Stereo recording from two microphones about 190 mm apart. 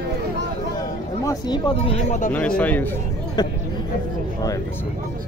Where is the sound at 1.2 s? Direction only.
20° left (ahead or behind); by 2.3 s 40° left (ahead or behind).